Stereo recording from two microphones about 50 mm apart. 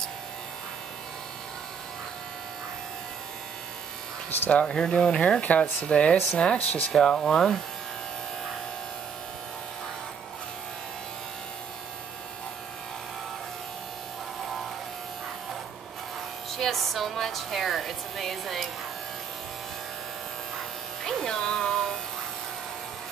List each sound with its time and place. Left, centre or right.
4.5 s speech: left
5.4 s speech: left
6.9 s speech: centre
16.5 s speech: centre
21.0 s music: centre